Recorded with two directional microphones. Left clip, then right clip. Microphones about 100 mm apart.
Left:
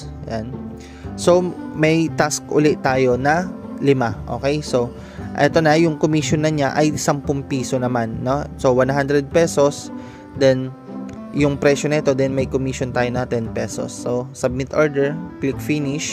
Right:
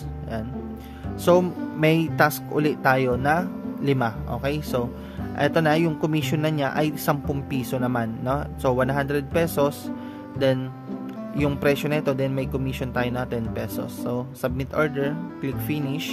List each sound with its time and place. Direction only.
1.3 s speech: 45° left (ahead or behind)
11.6 s speech: 40° left (ahead or behind)